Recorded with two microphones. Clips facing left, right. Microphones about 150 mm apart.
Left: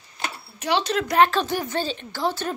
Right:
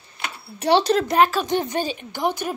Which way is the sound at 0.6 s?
35° right (ahead or behind).